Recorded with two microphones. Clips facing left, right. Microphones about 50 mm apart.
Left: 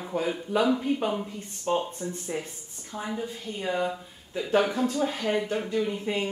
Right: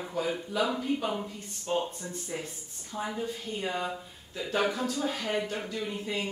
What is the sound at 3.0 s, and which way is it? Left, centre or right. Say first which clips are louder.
Speech: left 1 dB; centre.